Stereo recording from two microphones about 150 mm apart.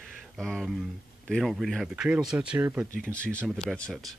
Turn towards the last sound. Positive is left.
turn(degrees=5)  # may be behind; listen again after turning